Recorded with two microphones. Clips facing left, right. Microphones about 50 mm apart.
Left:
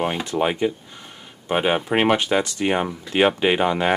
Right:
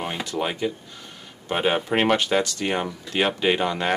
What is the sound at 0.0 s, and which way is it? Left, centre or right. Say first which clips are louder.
Speech: left 5 dB; left.